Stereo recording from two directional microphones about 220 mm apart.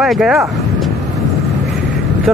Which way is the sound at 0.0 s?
Centre (ahead or behind).